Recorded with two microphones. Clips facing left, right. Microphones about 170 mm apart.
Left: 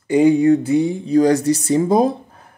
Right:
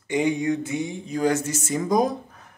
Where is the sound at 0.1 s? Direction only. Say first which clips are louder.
Left 10 dB; 35° left (ahead or behind).